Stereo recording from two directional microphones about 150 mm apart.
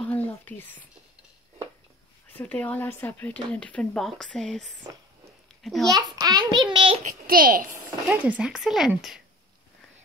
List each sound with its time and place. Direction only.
0.3 s speech: 15° left (ahead or behind)
2.3 s a child's voice: 10° left (ahead or behind)
5.9 s a child's voice: 25° right (ahead or behind)
7.0 s a child's voice: 65° right (ahead or behind)
7.7 s speech: 10° right (ahead or behind)